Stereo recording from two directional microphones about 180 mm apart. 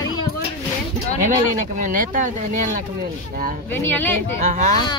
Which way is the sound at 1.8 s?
45° right (ahead or behind).